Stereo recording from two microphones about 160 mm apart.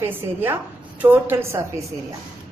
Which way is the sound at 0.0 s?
15° right (ahead or behind).